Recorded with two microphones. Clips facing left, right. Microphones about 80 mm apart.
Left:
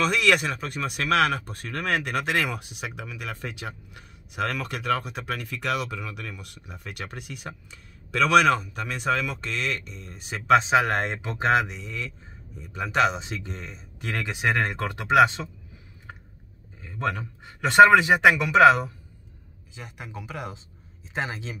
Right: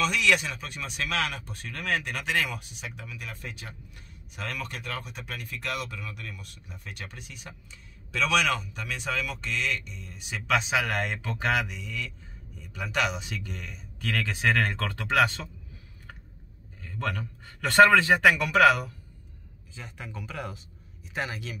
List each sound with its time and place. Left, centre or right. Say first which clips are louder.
0.0 s a man's voice: left 3 dB; left
16.8 s a man's voice: left 4 dB; left